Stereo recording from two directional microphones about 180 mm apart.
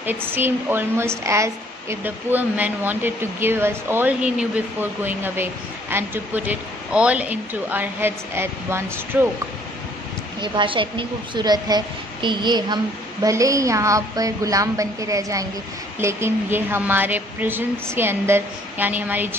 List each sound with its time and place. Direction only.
0.0 s speech: 10° right (ahead or behind)
10.4 s a woman's voice: 25° right (ahead or behind); by 19.3 s 10° right (ahead or behind)